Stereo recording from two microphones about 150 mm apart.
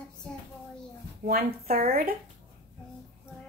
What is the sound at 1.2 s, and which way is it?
Speech, 85° right.